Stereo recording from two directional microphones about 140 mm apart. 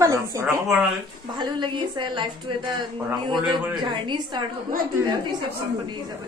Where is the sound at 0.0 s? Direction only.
25° right (ahead or behind).